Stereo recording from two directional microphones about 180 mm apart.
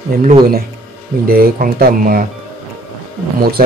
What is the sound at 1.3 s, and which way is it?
Speech, 55° right (ahead or behind).